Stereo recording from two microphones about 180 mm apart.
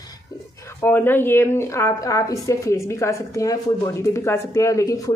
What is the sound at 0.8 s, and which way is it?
Speech, 10° left (ahead or behind).